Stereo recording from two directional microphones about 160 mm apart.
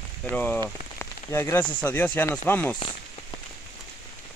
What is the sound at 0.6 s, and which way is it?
Speech, 15° left (ahead or behind).